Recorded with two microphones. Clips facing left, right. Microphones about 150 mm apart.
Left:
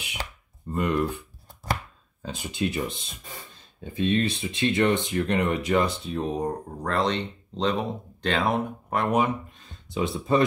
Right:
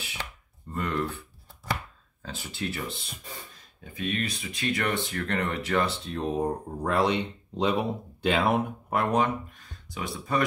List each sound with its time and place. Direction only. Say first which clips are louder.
0.7 s speech: left 5 dB; 15° left (ahead or behind)
2.2 s speech: left 6 dB; 15° left (ahead or behind)
6.1 s speech: right 1 dB; centre (ahead or behind)
9.6 s a sound: left 8 dB; 25° left (ahead or behind)